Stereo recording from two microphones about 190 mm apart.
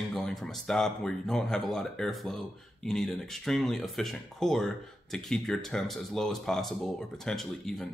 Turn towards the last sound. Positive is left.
turn(degrees=0)  # may be behind; listen again after turning